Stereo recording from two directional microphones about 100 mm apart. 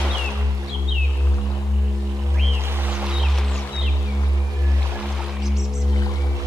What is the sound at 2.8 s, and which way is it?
Music, 5° right (ahead or behind).